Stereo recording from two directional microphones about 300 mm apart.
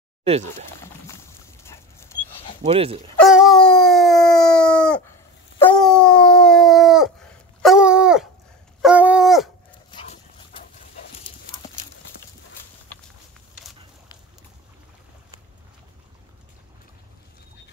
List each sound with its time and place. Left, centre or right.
0.2 s speech: right
1.0 s dog: centre
2.6 s speech: centre
3.2 s dog: centre
9.8 s dog: centre